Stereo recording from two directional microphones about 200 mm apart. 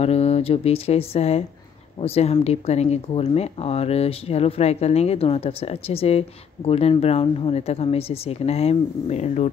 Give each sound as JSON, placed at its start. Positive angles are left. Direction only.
{"t": 0.0, "sound": "speech", "side_deg": 30}